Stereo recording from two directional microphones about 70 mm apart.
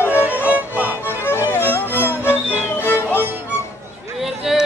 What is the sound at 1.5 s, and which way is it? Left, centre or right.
Music, left.